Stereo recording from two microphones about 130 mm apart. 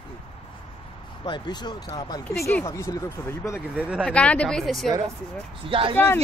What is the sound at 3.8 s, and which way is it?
Speech, 10° right (ahead or behind).